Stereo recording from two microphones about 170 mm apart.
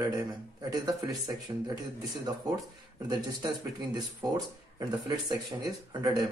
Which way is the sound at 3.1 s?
25° right (ahead or behind).